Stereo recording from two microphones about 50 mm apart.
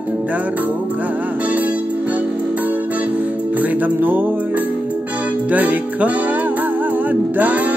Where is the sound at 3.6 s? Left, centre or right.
Right.